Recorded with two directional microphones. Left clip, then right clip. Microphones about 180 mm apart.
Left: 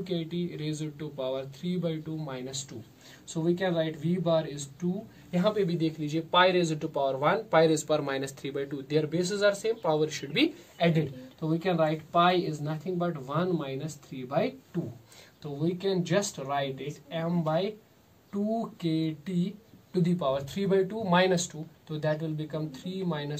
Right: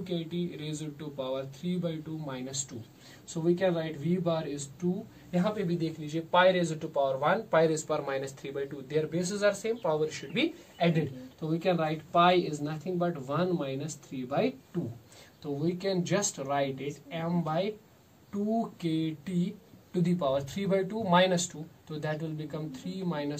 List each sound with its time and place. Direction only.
0.0 s speech: 20° left (ahead or behind)